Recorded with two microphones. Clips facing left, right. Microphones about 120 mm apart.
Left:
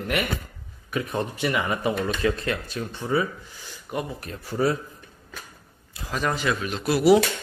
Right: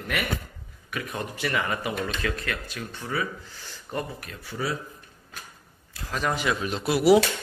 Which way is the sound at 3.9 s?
10° left (ahead or behind).